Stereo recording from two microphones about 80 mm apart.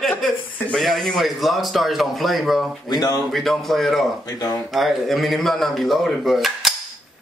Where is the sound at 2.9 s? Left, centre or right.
Left.